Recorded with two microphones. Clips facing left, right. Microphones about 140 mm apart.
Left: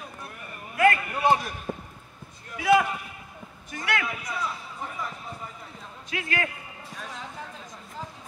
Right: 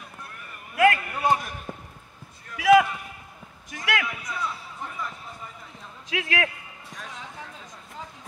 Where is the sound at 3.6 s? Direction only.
90° right.